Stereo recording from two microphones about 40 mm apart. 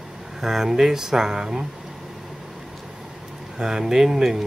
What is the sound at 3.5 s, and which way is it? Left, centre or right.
Speech, centre.